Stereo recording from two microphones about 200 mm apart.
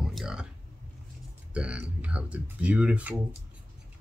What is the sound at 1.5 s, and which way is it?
Speech, 5° right (ahead or behind).